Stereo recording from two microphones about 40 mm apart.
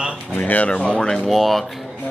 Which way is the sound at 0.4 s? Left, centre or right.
Left.